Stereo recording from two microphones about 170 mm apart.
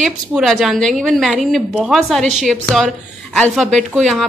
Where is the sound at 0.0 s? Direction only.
Centre (ahead or behind).